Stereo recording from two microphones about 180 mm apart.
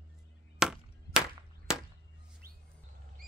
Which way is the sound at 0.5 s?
5° right (ahead or behind).